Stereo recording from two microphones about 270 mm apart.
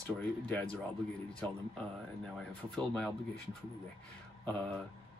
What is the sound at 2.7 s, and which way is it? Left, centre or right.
Speech, centre.